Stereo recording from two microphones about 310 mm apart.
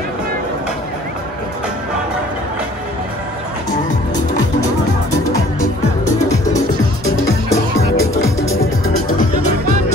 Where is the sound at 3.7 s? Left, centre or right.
Left.